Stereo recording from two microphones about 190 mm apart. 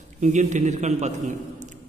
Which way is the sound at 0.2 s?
40° right (ahead or behind).